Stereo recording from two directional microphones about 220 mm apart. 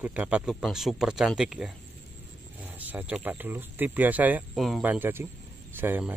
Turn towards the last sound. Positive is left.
turn(degrees=-10)  # may be behind; listen again after turning